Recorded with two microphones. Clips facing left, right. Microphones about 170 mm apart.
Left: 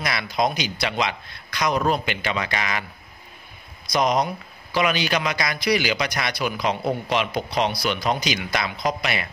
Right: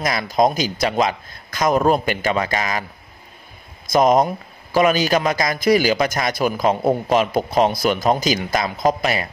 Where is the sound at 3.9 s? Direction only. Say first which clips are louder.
Right 6 dB; 45° right (ahead or behind).